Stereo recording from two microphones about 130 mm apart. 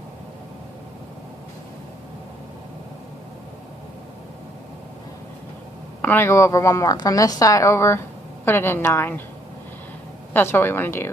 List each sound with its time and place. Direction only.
6.0 s a woman's voice: 20° left (ahead or behind)
10.3 s a woman's voice: 15° left (ahead or behind)